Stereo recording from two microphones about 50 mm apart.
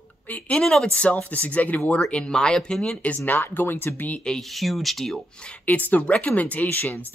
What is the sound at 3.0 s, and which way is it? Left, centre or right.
Speech, left.